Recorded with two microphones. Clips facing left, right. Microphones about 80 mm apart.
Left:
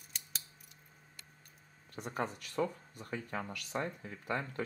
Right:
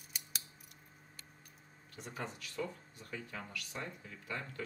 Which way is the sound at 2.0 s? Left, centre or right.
Left.